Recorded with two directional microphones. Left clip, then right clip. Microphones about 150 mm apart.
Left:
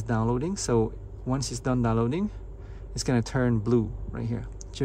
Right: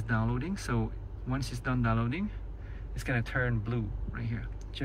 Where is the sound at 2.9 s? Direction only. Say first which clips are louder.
Left 5 dB; 45° left (ahead or behind).